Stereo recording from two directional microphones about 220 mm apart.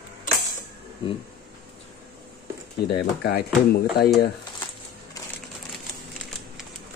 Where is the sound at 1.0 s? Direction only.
20° left (ahead or behind).